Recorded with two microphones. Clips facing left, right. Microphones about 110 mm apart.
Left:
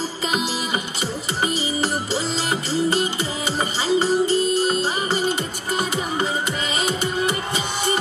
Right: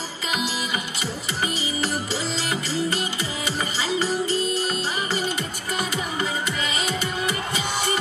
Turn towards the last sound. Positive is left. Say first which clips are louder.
# left 4 dB
turn(degrees=25)  # may be behind; listen again after turning